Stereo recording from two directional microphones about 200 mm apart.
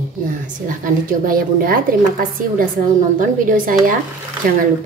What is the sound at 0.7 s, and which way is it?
A woman's voice, 40° right (ahead or behind).